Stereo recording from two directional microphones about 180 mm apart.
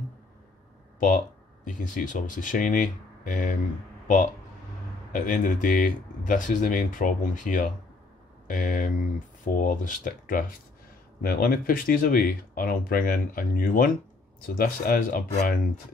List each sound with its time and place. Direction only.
0.9 s speech: 45° left (ahead or behind)
5.1 s speech: 45° left (ahead or behind)